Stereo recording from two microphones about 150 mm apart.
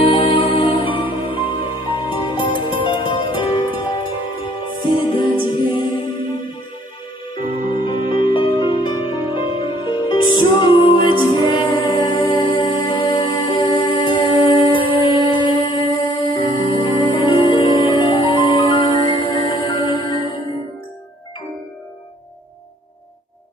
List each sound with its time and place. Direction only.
0.0 s music: 35° left (ahead or behind)
7.7 s music: 30° left (ahead or behind)